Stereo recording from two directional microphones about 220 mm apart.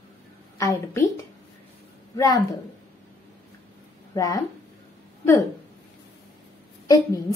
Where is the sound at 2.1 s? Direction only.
15° left (ahead or behind).